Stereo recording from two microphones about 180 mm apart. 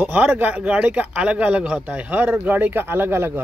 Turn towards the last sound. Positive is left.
turn(degrees=-10)  # may be behind; listen again after turning